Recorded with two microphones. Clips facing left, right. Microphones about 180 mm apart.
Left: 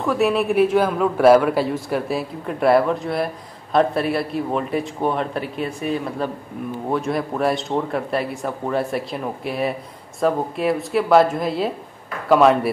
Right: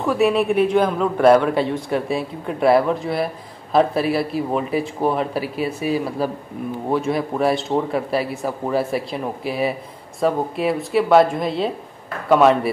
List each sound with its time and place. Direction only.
0.0 s a man's voice: centre (ahead or behind)